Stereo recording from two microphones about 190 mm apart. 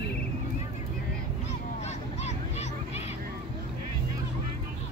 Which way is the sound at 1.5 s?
35° left (ahead or behind).